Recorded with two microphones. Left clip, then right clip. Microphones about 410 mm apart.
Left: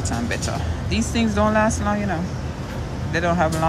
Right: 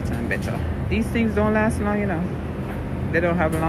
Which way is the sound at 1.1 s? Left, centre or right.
Centre.